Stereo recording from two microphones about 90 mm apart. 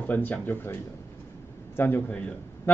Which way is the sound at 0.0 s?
20° left (ahead or behind).